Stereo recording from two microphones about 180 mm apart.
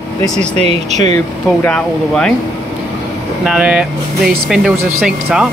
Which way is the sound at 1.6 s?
5° left (ahead or behind).